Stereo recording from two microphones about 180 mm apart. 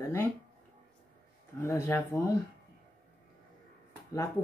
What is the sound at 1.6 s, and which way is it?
Speech, 15° left (ahead or behind).